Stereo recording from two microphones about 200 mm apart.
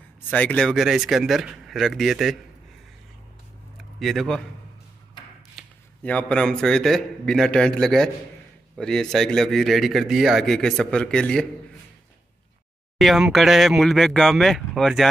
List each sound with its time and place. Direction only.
0.3 s speech: 5° left (ahead or behind)
4.0 s speech: centre (ahead or behind)
5.6 s speech: 5° left (ahead or behind)
13.0 s speech: centre (ahead or behind)